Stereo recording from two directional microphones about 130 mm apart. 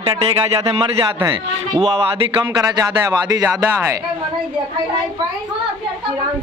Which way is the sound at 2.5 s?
30° right (ahead or behind).